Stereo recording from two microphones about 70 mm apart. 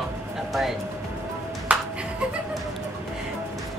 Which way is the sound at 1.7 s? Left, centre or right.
Centre.